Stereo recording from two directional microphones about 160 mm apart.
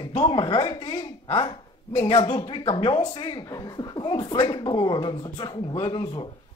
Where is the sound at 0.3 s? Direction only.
30° left (ahead or behind).